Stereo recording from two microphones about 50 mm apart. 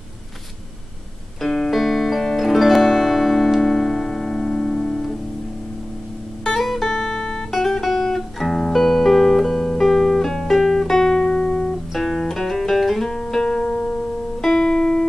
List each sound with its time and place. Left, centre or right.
1.4 s music: centre
6.4 s music: centre
7.8 s music: centre
11.9 s music: centre
14.4 s music: centre